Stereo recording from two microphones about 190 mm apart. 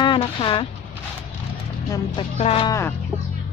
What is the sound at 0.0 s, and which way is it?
Speech, 25° left (ahead or behind).